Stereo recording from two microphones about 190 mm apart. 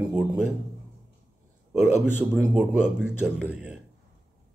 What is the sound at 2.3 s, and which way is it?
A man's voice, 5° right (ahead or behind).